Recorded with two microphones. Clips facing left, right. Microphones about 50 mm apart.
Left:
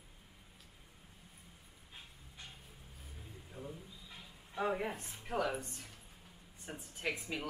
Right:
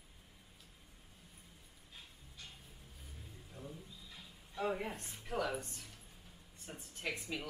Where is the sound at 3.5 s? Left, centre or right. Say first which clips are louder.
Left 3 dB; centre.